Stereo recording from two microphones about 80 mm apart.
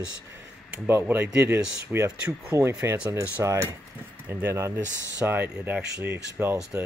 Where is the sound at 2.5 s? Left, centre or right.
Right.